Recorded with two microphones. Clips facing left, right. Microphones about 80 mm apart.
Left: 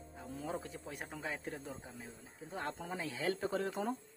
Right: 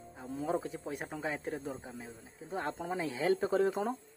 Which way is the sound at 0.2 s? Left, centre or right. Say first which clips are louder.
Right 7 dB; centre.